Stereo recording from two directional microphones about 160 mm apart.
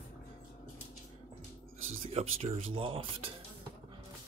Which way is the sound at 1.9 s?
40° right (ahead or behind).